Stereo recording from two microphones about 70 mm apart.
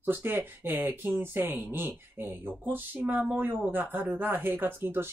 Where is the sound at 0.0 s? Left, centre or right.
Right.